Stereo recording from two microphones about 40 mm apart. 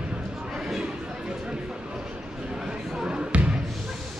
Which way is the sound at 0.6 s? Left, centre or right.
Centre.